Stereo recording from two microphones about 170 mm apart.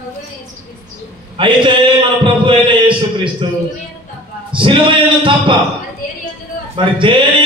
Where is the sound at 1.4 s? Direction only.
30° right (ahead or behind).